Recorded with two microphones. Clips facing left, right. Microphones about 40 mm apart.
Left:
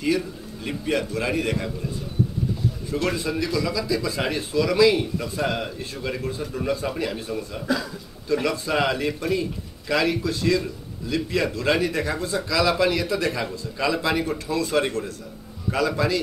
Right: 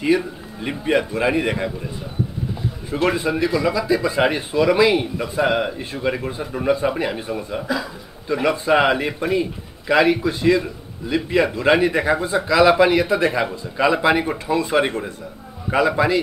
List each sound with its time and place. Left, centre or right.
0.0 s speech: right
2.9 s speech: right
7.6 s speech: centre
8.3 s speech: right